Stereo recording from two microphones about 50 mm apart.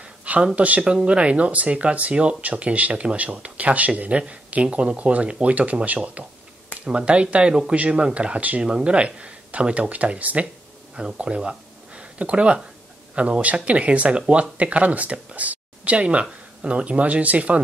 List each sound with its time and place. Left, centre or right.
0.3 s a sound: right
0.6 s speech: right
8.6 s speech: centre